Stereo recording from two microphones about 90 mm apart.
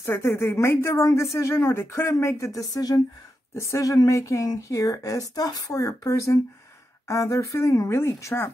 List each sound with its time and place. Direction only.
0.0 s speech: 25° left (ahead or behind); by 3.0 s 45° left (ahead or behind)
3.5 s speech: 30° left (ahead or behind)